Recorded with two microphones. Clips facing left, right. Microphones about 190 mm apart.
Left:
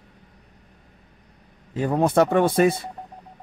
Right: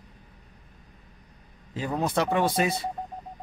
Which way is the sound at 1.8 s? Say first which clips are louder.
Left 8 dB; 55° left (ahead or behind).